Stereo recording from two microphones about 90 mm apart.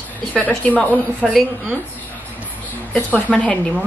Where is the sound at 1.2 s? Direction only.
Centre (ahead or behind).